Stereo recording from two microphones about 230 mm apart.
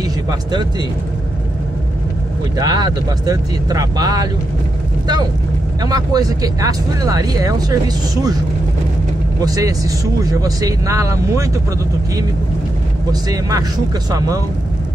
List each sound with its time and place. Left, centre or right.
0.3 s speech: centre
2.6 s speech: centre
5.8 s speech: centre
9.4 s speech: centre
13.1 s speech: centre